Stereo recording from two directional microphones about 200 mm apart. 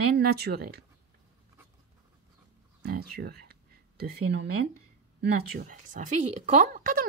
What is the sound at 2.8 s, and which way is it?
Speech, 50° right (ahead or behind).